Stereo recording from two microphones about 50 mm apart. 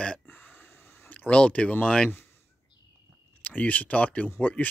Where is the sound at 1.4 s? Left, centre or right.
Left.